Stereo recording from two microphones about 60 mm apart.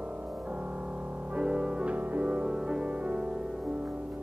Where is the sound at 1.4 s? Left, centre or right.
Centre.